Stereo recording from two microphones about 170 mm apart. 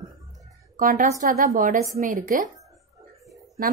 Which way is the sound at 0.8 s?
55° right (ahead or behind).